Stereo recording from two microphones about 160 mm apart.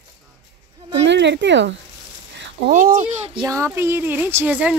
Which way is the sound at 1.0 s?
90° right.